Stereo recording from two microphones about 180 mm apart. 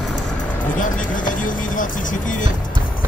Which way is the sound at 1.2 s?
45° left (ahead or behind).